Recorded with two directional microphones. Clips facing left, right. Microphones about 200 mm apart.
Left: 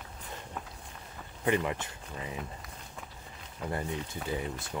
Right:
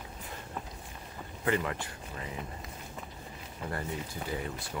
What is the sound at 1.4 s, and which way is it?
Speech, 20° left (ahead or behind).